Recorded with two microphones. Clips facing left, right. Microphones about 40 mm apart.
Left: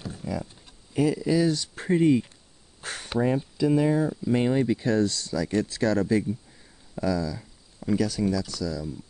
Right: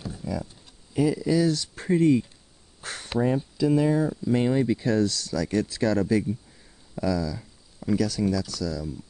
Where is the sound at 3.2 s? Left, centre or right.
Centre.